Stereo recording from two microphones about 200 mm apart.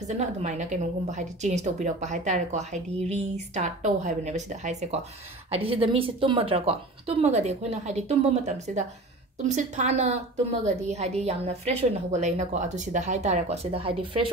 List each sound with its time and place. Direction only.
0.1 s a woman's voice: 35° right (ahead or behind)